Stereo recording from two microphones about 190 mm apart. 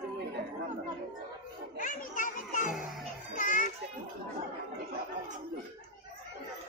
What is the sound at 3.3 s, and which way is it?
Speech, 45° left (ahead or behind).